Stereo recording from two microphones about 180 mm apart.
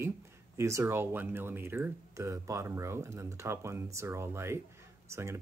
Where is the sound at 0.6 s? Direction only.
15° right (ahead or behind).